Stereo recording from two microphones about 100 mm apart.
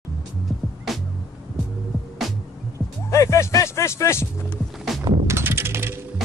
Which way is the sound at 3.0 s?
30° left (ahead or behind).